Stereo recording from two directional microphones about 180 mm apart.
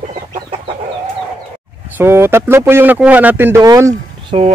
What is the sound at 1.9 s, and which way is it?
Speech, 15° right (ahead or behind).